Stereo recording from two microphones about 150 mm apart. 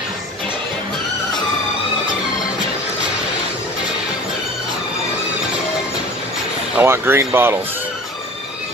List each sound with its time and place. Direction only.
6.8 s speech: 15° right (ahead or behind)